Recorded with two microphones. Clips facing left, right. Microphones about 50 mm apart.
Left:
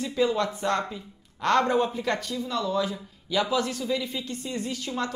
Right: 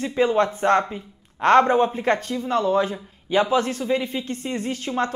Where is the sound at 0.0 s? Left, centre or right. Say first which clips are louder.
Right 5 dB; right.